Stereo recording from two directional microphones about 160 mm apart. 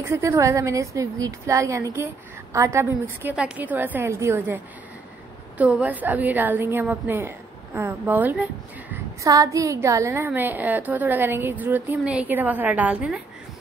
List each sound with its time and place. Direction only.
0.0 s a woman's voice: 15° right (ahead or behind)
5.6 s a woman's voice: 10° right (ahead or behind)